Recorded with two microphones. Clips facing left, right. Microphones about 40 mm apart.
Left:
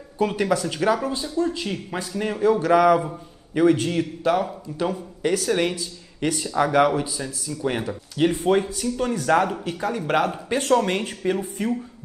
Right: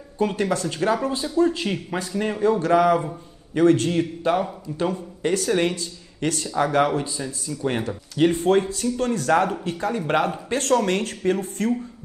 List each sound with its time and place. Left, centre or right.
0.2 s a man's voice: centre
3.9 s a man's voice: centre
8.3 s a man's voice: centre
10.5 s speech: centre